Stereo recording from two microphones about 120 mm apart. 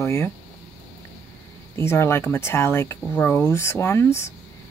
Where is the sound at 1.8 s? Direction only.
20° left (ahead or behind).